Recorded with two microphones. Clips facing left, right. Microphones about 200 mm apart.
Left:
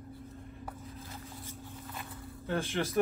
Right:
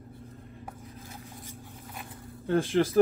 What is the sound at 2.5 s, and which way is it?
Speech, 30° right (ahead or behind).